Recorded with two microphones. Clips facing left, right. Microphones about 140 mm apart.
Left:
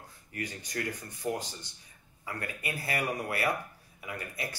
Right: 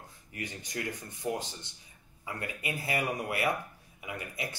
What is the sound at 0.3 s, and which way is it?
Speech, 20° right (ahead or behind).